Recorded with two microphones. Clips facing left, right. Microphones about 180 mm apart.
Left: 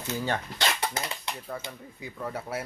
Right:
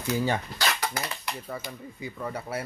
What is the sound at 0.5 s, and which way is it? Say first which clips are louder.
Dog: even; 25° left (ahead or behind).